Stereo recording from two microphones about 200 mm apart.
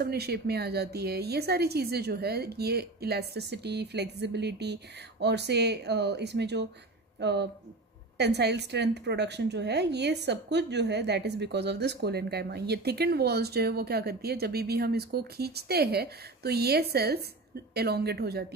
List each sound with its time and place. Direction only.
0.0 s speech: 55° right (ahead or behind)